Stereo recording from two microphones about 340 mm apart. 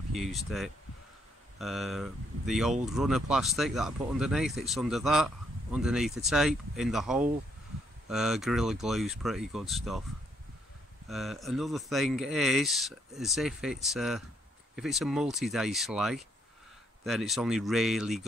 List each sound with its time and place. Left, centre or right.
0.1 s speech: centre
11.1 s speech: centre